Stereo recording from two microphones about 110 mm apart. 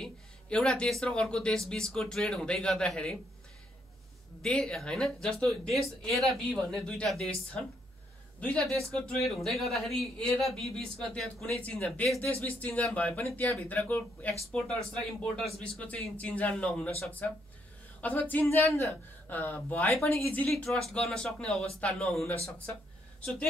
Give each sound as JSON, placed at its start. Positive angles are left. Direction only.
{"t": 0.0, "sound": "speech", "side_deg": 5}
{"t": 4.4, "sound": "a man's voice", "side_deg": 10}
{"t": 18.0, "sound": "speech", "side_deg": 15}
{"t": 20.3, "sound": "a man's voice", "side_deg": 10}